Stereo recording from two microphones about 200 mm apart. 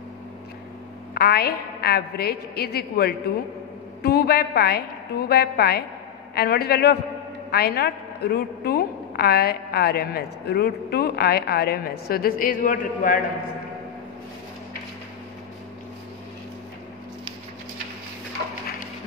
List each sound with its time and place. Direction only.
1.1 s a woman's voice: 50° left (ahead or behind)